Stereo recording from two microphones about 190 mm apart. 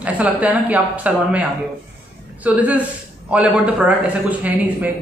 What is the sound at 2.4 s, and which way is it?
Speech, 5° right (ahead or behind).